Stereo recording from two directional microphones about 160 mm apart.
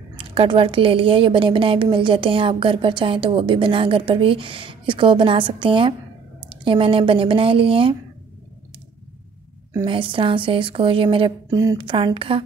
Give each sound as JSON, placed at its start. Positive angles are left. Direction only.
{"t": 0.1, "sound": "a woman's voice", "side_deg": -35}
{"t": 9.8, "sound": "a woman's voice", "side_deg": -30}